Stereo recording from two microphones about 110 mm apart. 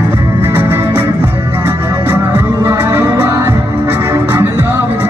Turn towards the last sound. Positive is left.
turn(degrees=-20)  # may be behind; listen again after turning